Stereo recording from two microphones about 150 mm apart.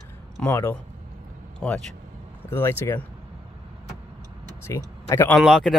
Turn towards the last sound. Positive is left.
turn(degrees=0)  # may be behind; listen again after turning